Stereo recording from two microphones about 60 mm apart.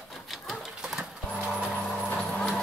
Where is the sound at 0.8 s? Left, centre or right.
Centre.